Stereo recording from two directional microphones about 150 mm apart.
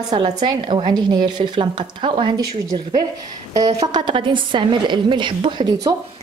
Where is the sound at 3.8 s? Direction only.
30° right (ahead or behind).